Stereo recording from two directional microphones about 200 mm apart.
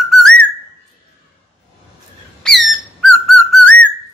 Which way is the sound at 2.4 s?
Centre (ahead or behind).